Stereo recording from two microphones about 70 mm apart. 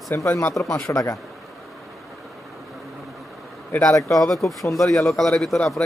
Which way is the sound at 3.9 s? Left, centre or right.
Left.